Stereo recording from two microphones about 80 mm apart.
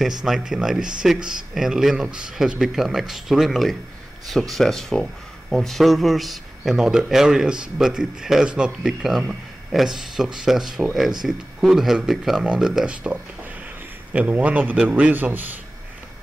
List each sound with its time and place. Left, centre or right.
0.5 s a man's voice: centre